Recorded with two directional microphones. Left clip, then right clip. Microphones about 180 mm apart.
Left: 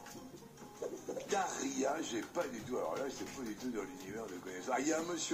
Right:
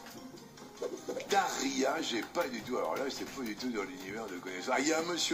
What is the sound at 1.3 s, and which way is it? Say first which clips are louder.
Speech: right 6 dB; 15° right (ahead or behind).